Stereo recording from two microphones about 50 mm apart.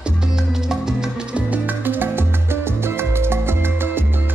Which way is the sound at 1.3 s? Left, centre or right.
Right.